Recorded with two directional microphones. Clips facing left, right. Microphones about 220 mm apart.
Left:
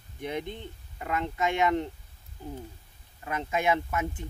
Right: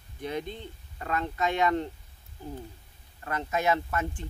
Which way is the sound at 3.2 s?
15° left (ahead or behind).